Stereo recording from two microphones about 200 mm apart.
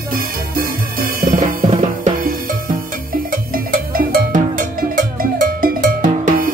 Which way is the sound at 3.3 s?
45° right (ahead or behind).